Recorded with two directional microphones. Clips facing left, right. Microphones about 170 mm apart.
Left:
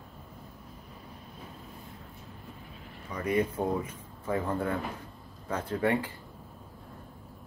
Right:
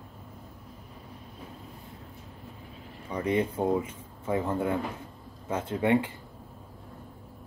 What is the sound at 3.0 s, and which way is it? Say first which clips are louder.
Speech: right 1 dB; 30° right (ahead or behind).